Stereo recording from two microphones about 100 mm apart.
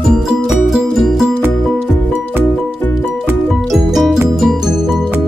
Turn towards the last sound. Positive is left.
turn(degrees=0)  # may be behind; listen again after turning